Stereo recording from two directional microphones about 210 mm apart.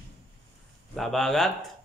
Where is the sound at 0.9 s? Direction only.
Centre (ahead or behind).